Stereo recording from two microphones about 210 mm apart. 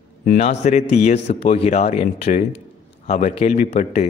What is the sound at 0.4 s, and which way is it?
Speech, 35° left (ahead or behind).